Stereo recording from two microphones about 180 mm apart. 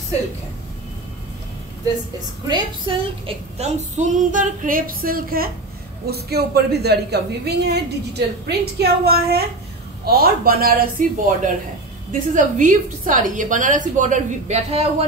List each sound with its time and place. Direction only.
2.4 s a woman's voice: 25° right (ahead or behind)